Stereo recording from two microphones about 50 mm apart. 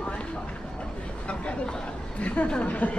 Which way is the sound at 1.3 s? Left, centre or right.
Left.